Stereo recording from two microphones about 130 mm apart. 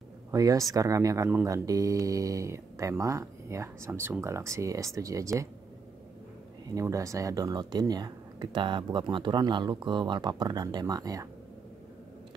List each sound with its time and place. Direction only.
0.3 s speech: 25° right (ahead or behind)
6.7 s speech: 25° right (ahead or behind)